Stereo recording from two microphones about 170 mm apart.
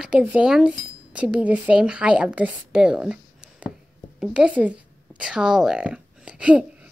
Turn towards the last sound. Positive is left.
turn(degrees=-5)  # may be behind; listen again after turning